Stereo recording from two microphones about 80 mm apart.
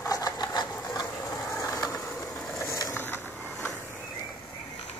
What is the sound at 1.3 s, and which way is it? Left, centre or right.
Mechanisms, left.